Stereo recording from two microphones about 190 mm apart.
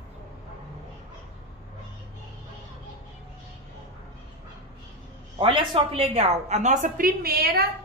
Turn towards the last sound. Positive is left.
turn(degrees=-55)  # may be behind; listen again after turning